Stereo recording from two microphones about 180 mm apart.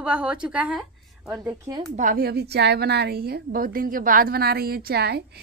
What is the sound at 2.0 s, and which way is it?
A woman's voice, 50° right (ahead or behind).